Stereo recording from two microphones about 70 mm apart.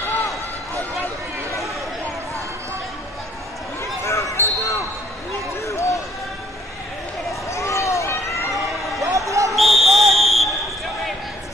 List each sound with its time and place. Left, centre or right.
4.0 s basketball bounce: left
5.7 s run: left
7.4 s run: left
9.0 s basketball bounce: right
9.5 s whistle: centre